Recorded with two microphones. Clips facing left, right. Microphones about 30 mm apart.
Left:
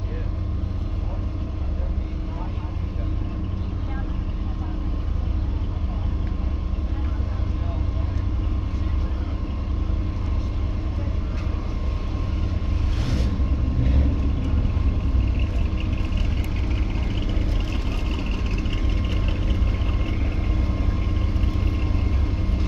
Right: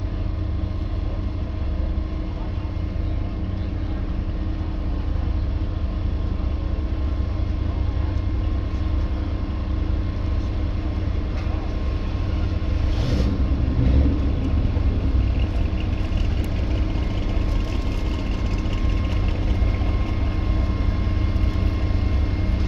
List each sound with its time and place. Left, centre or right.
13.0 s vehicle: centre
13.5 s vehicle: right
22.4 s vehicle: right